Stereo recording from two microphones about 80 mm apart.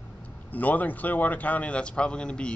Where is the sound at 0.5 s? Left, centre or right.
Left.